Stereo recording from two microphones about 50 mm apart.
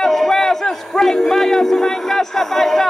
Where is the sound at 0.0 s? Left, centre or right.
Centre.